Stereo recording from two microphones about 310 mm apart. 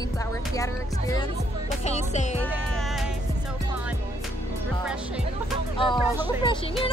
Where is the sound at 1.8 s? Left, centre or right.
Left.